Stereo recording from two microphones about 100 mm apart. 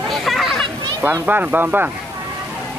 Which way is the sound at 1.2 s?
15° right (ahead or behind).